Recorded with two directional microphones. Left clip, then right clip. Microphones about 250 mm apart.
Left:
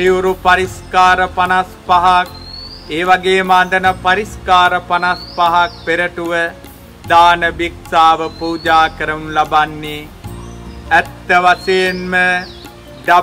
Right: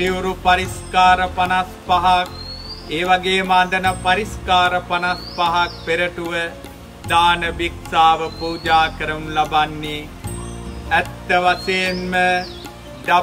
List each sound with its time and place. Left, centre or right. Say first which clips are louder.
0.0 s music: left 7 dB; centre